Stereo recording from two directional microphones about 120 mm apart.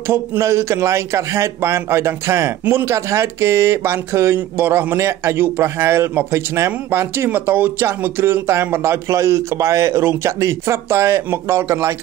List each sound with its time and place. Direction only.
0.1 s a man's voice: 20° right (ahead or behind)